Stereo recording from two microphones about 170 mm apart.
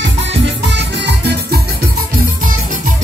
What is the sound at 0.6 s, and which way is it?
Music, 90° right.